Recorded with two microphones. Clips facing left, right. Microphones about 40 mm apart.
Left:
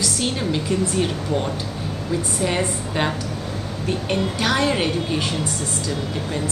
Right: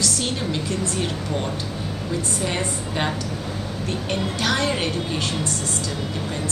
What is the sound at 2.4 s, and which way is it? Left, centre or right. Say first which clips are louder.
Speech: left 3 dB; centre.